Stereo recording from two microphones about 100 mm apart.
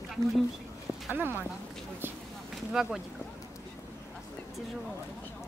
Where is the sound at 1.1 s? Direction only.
20° right (ahead or behind).